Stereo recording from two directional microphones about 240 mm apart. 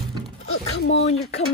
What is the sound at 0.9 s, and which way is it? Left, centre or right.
Speech, left.